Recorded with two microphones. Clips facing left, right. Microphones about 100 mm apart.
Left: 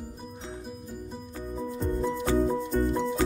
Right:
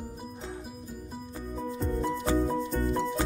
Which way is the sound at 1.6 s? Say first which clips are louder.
Left 2 dB; centre (ahead or behind).